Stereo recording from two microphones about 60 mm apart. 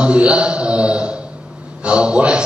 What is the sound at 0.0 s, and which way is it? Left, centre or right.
A man's voice, centre.